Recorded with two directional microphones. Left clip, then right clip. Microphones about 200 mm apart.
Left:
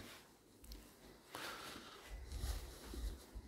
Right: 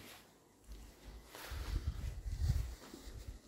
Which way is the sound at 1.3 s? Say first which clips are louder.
Left 2 dB; 25° left (ahead or behind).